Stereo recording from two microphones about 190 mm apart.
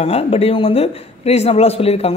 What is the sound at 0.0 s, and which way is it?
Speech, 30° left (ahead or behind).